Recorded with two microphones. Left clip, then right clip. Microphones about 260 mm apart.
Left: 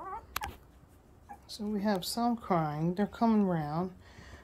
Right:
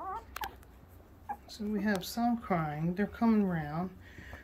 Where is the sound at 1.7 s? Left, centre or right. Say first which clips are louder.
Left 2 dB; centre.